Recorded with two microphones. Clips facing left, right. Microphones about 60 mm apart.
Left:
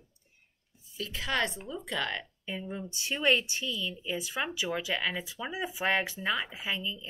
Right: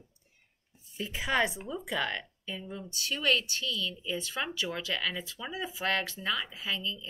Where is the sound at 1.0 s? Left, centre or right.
Centre.